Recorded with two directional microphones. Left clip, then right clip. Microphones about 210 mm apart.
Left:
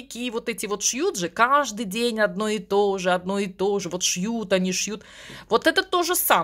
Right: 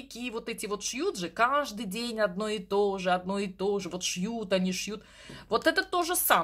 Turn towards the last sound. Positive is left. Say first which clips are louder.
# left 5 dB
turn(degrees=30)  # may be behind; listen again after turning